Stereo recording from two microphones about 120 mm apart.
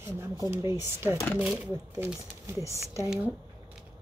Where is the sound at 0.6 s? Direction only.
25° right (ahead or behind).